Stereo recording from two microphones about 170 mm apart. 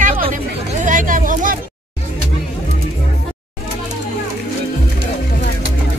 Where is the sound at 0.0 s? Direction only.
50° right (ahead or behind).